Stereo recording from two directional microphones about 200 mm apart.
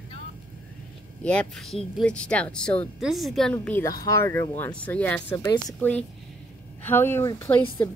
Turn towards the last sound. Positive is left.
turn(degrees=10)  # may be behind; listen again after turning